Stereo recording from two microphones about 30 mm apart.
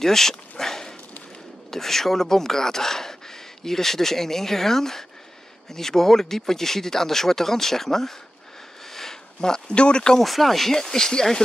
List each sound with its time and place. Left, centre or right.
0.0 s dog: centre
1.7 s speech: centre
8.9 s a sound: centre
9.7 s speech: left
10.2 s speech: centre
10.7 s speech: centre